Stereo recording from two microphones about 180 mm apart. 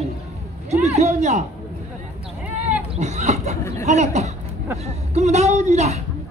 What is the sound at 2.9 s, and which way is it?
Speech, 40° right (ahead or behind).